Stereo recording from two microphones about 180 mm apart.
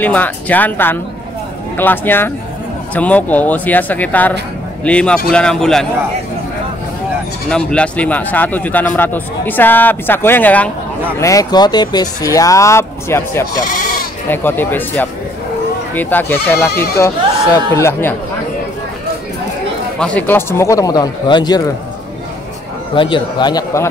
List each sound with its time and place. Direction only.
0.0 s speech: 10° left (ahead or behind)
7.4 s speech: 5° left (ahead or behind)
20.0 s speech: 10° left (ahead or behind)
22.9 s speech: 25° left (ahead or behind)